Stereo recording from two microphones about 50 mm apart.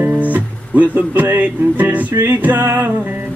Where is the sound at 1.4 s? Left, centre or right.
Right.